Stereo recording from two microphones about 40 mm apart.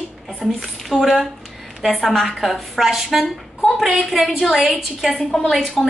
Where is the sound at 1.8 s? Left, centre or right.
Centre.